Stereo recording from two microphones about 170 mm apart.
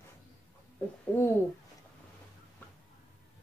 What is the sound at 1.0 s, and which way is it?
Speech, 10° left (ahead or behind).